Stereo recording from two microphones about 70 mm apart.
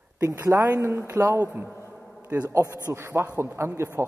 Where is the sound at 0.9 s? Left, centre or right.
Right.